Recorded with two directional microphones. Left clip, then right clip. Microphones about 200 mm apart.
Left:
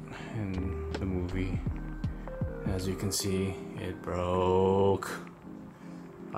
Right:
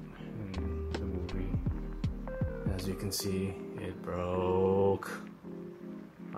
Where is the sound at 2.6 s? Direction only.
Centre (ahead or behind).